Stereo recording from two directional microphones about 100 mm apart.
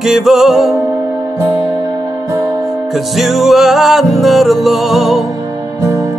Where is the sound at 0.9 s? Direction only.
20° right (ahead or behind).